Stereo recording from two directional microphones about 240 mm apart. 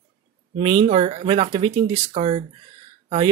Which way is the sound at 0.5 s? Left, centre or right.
Right.